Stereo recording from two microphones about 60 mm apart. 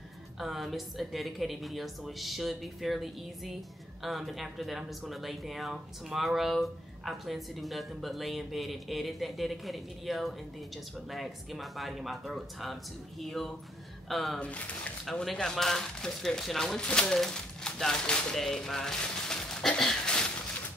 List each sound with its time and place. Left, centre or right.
0.4 s speech: centre
14.4 s speech: left
15.0 s speech: centre
18.4 s a sound: centre